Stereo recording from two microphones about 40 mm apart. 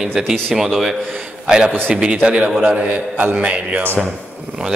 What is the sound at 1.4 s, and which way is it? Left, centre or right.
A man's voice, right.